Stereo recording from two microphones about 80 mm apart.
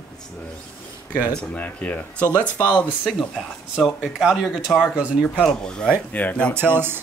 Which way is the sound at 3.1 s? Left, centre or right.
Centre.